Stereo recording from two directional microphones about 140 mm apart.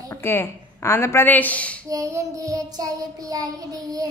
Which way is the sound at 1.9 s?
25° right (ahead or behind).